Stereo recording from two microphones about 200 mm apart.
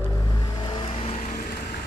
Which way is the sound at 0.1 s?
20° left (ahead or behind).